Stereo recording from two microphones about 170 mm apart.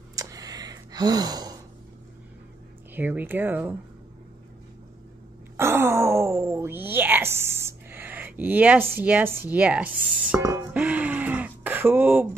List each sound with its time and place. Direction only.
0.1 s gasp: 20° right (ahead or behind)
2.9 s speech: 10° right (ahead or behind)
5.6 s groan: 15° right (ahead or behind)
9.4 s speech: 10° right (ahead or behind)
10.4 s a sound: 15° right (ahead or behind)